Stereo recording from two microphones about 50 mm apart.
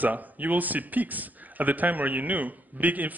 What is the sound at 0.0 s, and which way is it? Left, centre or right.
A man's voice, right.